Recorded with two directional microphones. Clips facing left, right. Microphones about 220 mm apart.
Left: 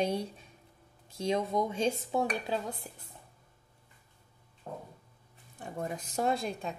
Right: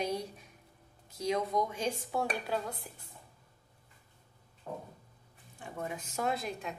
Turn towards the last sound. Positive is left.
turn(degrees=30)  # may be behind; listen again after turning